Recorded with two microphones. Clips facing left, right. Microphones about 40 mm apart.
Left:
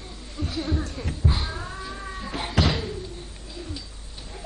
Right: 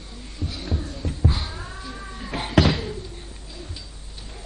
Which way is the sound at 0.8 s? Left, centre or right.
Left.